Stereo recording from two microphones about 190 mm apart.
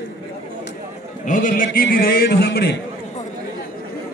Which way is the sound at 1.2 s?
45° left (ahead or behind).